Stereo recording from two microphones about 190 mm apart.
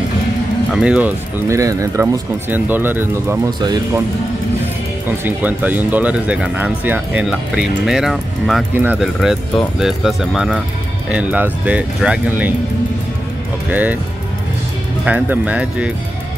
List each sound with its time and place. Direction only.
0.7 s speech: 5° right (ahead or behind)
3.6 s speech: 20° right (ahead or behind)
5.2 s speech: 10° right (ahead or behind)
13.7 s speech: 10° right (ahead or behind)
15.0 s speech: 10° right (ahead or behind)